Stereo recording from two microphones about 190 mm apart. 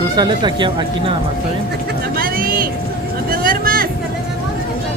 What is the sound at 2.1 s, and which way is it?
Vehicle, 50° right (ahead or behind).